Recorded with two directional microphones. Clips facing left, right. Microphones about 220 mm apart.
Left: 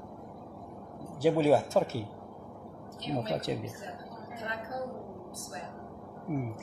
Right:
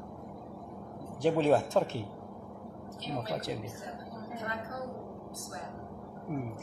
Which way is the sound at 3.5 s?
25° left (ahead or behind).